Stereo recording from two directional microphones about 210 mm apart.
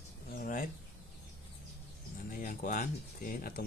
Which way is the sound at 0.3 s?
40° left (ahead or behind).